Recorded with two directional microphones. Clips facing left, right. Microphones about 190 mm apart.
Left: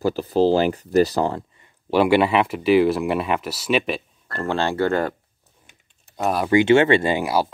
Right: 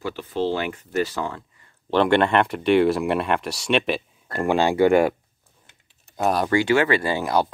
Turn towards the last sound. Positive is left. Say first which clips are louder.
# even
turn(degrees=5)  # may be behind; listen again after turning